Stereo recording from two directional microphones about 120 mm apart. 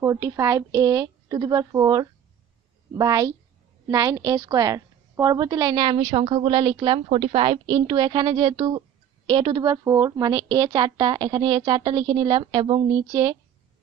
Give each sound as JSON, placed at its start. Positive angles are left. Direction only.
{"t": 0.0, "sound": "a woman's voice", "side_deg": -25}
{"t": 13.0, "sound": "a woman's voice", "side_deg": -30}